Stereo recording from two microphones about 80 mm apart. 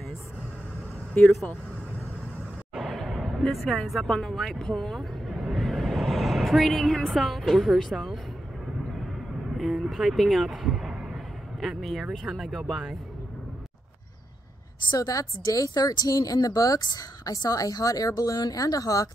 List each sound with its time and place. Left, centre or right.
1.2 s speech: centre
2.7 s speech: centre
9.6 s speech: centre
15.0 s speech: left